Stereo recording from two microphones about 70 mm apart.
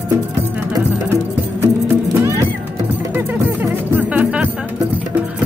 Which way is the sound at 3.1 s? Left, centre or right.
Right.